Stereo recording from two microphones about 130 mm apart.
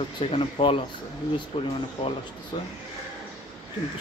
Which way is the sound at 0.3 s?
45° left (ahead or behind).